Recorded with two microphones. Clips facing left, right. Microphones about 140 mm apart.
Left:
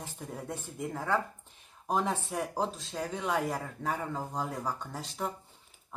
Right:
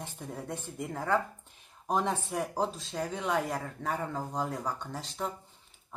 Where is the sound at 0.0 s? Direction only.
Centre (ahead or behind).